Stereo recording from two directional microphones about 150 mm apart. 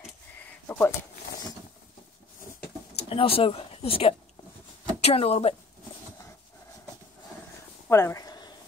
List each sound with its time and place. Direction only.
0.7 s speech: 15° left (ahead or behind)
3.0 s speech: 40° left (ahead or behind)
7.9 s a sound: 20° left (ahead or behind)